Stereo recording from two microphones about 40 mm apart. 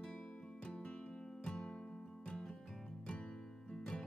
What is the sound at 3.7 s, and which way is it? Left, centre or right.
Music, centre.